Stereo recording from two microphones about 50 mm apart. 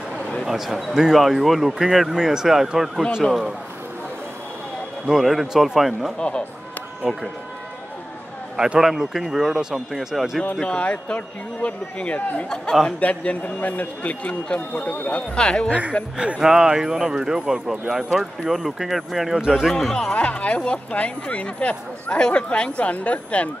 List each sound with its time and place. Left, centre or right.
0.5 s speech: centre
3.2 s speech: centre
5.0 s speech: centre
6.1 s speech: centre
7.1 s speech: centre
8.5 s speech: centre
10.4 s a man's voice: centre; by 15.0 s left
15.0 s speech: left
16.3 s speech: centre
19.7 s speech: centre
20.1 s speech: left